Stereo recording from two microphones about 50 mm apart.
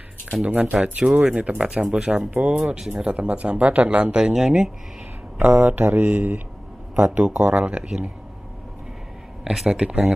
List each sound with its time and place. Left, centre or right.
0.5 s speech: right
5.4 s speech: right
9.4 s speech: centre
9.7 s speech: centre